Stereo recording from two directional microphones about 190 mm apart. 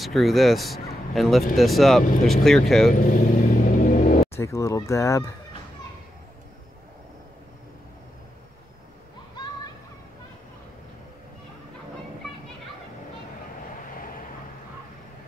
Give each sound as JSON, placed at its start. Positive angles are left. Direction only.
{"t": 0.0, "sound": "speech", "side_deg": 0}
{"t": 3.0, "sound": "vehicle", "side_deg": 45}
{"t": 4.3, "sound": "speech", "side_deg": 15}